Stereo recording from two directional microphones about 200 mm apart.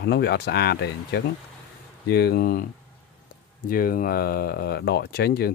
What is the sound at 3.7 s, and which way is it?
Speech, 45° left (ahead or behind).